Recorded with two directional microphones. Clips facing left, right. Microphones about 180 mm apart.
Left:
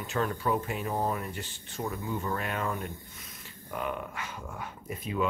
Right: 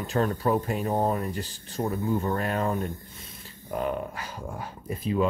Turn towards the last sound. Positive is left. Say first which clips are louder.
# right 5 dB
turn(degrees=-30)  # may be behind; listen again after turning